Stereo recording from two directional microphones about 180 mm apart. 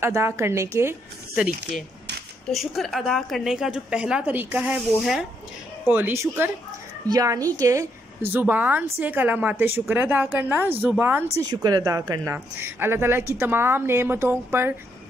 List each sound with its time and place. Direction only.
0.0 s a woman's voice: 15° right (ahead or behind)
2.4 s a woman's voice: centre (ahead or behind)